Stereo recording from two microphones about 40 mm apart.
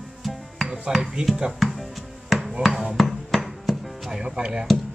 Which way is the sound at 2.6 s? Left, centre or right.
Centre.